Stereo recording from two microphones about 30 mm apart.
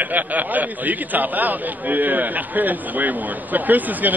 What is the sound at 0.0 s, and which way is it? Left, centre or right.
A man's voice, right.